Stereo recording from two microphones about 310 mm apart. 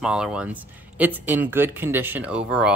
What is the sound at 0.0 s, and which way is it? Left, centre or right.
Speech, centre.